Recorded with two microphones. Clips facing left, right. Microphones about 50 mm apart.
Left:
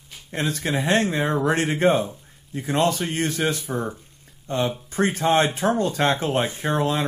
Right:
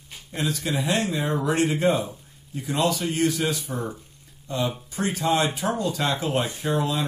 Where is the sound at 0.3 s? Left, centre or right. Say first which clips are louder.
Left 2 dB; left.